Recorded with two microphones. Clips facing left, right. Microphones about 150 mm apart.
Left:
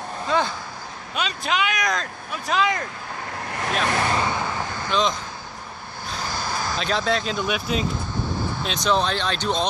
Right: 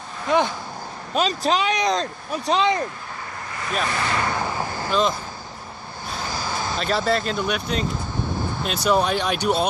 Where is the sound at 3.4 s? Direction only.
65° left (ahead or behind).